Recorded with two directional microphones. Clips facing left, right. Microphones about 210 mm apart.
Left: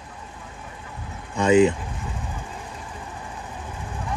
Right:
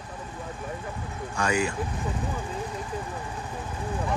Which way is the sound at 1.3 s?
20° left (ahead or behind).